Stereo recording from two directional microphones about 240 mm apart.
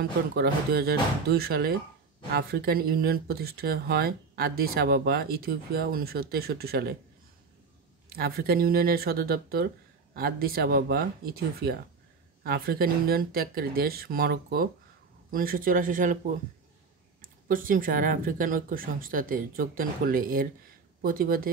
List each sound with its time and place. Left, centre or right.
0.3 s speech: right
8.1 s speech: right
17.2 s speech: right